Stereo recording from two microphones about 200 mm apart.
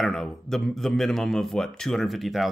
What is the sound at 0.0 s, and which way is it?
Speech, centre (ahead or behind).